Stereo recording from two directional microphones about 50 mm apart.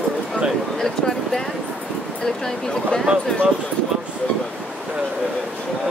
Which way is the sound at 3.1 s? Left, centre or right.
Right.